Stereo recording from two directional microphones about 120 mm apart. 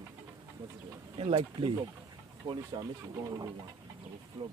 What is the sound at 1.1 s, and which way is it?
Speech, 50° right (ahead or behind).